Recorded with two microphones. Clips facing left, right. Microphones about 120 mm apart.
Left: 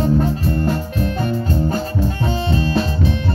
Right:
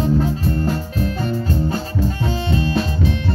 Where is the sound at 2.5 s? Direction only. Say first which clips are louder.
Even; 35° left (ahead or behind).